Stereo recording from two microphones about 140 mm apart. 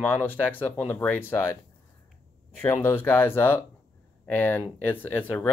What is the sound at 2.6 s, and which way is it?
Speech, 15° left (ahead or behind).